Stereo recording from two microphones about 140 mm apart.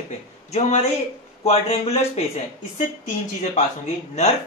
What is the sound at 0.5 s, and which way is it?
Speech, 50° left (ahead or behind).